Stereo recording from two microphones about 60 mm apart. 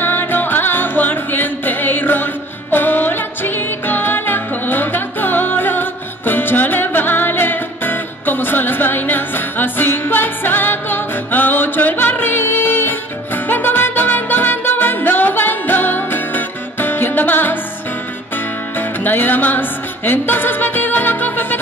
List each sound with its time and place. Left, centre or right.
0.0 s music: left
18.8 s music: left